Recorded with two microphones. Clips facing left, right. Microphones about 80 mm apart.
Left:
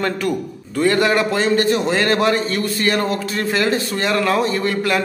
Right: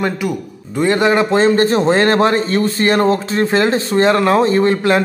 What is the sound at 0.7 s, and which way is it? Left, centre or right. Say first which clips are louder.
A man's voice: right 3 dB; right.